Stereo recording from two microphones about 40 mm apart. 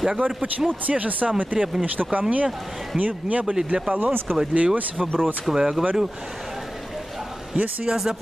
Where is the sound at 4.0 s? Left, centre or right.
Right.